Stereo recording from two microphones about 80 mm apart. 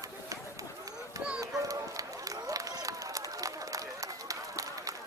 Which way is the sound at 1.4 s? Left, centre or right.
Right.